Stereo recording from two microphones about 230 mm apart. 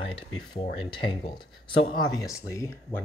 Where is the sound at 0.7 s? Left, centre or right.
Left.